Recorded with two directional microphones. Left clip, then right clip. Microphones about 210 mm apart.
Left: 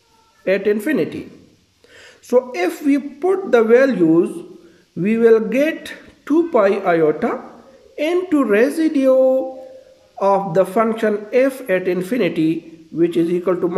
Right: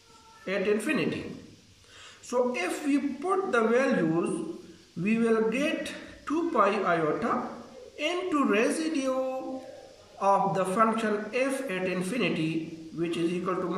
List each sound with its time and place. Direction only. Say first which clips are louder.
0.5 s a man's voice: left 10 dB; 40° left (ahead or behind)
2.2 s a man's voice: left 11 dB; 40° left (ahead or behind)
10.1 s a man's voice: left 9 dB; 40° left (ahead or behind)